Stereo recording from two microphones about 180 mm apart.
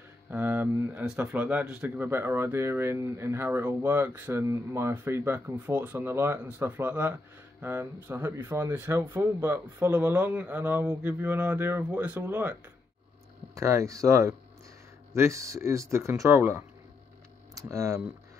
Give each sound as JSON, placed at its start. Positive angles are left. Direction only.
{"t": 0.3, "sound": "speech", "side_deg": -10}
{"t": 13.6, "sound": "speech", "side_deg": -15}